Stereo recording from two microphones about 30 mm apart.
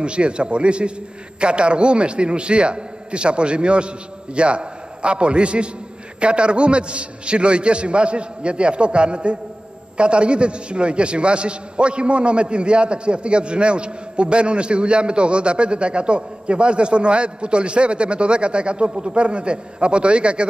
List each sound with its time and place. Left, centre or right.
0.0 s a man's voice: right